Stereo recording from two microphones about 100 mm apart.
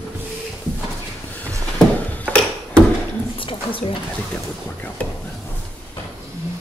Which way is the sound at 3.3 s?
60° left (ahead or behind).